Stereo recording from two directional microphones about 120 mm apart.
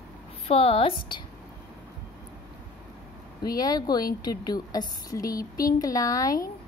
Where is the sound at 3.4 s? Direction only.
30° left (ahead or behind).